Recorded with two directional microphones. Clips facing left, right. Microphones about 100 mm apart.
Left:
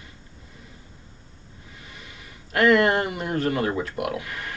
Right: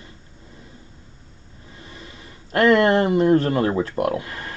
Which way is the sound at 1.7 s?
35° right (ahead or behind).